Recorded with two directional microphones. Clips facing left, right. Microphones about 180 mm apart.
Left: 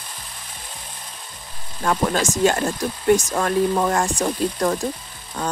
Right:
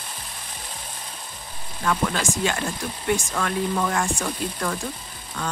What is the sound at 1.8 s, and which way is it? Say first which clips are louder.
Speech: left 4 dB; 40° left (ahead or behind).